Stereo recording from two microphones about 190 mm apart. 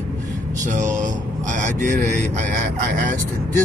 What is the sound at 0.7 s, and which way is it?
Speech, 40° right (ahead or behind).